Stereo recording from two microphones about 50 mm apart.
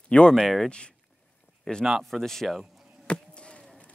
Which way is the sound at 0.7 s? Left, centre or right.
Centre.